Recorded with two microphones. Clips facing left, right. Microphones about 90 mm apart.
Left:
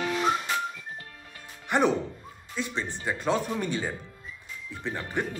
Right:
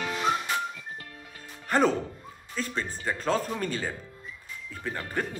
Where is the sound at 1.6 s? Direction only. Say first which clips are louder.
Even; 10° left (ahead or behind).